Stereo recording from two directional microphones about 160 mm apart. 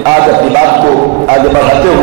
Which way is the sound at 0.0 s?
20° right (ahead or behind).